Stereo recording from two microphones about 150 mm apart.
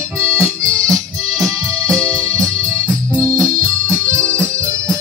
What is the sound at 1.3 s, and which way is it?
Music, 5° left (ahead or behind).